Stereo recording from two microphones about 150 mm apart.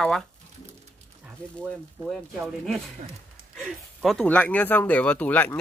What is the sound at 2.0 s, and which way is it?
Speech, centre (ahead or behind).